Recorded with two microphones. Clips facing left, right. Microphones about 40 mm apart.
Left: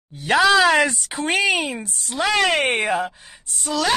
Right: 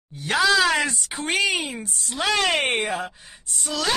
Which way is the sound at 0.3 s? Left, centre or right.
Left.